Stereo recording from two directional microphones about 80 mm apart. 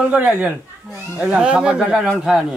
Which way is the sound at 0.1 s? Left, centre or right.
Centre.